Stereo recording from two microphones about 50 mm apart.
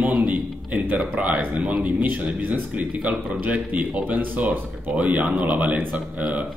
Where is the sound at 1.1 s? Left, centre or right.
Right.